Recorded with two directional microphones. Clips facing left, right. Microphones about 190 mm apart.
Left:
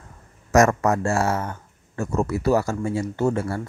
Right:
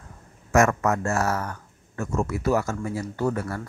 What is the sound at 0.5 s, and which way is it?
Speech, 35° left (ahead or behind).